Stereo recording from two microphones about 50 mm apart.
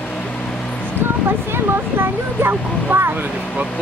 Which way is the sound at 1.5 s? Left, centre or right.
Right.